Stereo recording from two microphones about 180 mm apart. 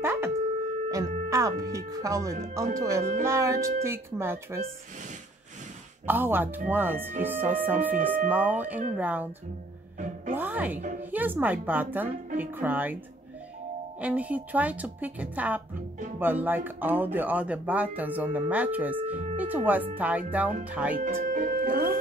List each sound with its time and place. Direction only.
0.0 s wind instrument: 15° right (ahead or behind)
0.8 s music: 20° right (ahead or behind)
1.9 s speech: 20° right (ahead or behind)
6.0 s speech: 10° right (ahead or behind)
10.3 s music: 10° right (ahead or behind)
11.0 s speech: 10° right (ahead or behind)
14.0 s speech: 10° right (ahead or behind)
21.3 s music: 50° right (ahead or behind)